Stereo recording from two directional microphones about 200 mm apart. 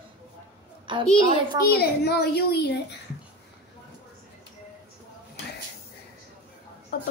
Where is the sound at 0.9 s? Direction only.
25° right (ahead or behind).